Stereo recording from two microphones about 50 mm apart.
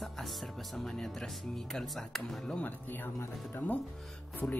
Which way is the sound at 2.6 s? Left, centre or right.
Left.